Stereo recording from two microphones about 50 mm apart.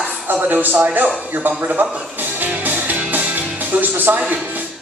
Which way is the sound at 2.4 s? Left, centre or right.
Right.